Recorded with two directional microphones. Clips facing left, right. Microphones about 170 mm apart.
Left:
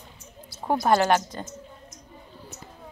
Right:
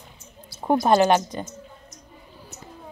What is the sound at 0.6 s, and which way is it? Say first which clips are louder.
Speech: right 3 dB; 20° right (ahead or behind).